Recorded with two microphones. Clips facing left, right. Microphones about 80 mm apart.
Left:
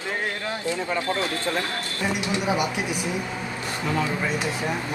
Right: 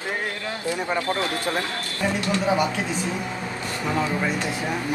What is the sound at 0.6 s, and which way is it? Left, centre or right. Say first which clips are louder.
Speech: right 2 dB; right.